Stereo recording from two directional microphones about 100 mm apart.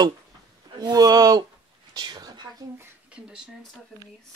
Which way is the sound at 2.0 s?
45° right (ahead or behind).